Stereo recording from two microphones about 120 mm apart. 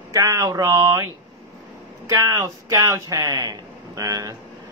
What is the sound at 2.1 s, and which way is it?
Speech, 30° right (ahead or behind).